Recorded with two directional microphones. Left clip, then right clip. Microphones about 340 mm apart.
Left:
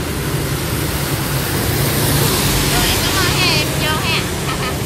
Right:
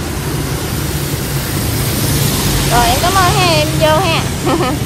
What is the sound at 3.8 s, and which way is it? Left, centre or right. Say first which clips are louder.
Speech: right 6 dB; centre.